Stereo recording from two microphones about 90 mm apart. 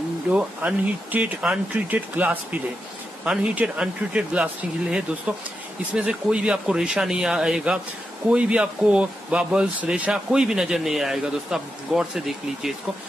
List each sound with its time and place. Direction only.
0.3 s speech: 15° right (ahead or behind)
5.9 s speech: 10° right (ahead or behind)